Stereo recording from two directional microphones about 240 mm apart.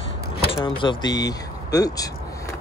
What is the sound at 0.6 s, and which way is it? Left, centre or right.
Speech, left.